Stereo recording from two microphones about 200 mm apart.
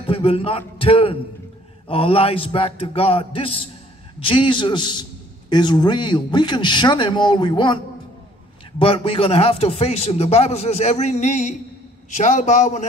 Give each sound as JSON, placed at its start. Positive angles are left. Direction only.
{"t": 0.0, "sound": "a man's voice", "side_deg": 30}